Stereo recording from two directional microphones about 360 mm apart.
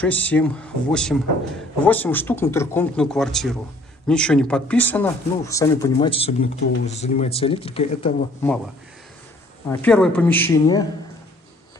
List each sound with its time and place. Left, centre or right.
0.0 s speech: centre
9.7 s speech: centre